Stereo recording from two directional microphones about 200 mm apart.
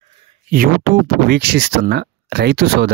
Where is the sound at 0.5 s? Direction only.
50° right (ahead or behind).